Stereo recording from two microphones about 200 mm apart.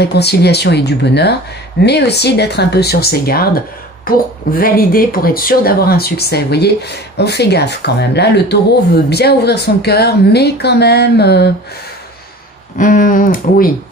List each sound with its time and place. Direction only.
0.0 s a woman's voice: 55° left (ahead or behind)
12.7 s speech: 40° left (ahead or behind)